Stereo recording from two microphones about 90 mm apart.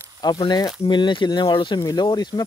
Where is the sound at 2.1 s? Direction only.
50° left (ahead or behind).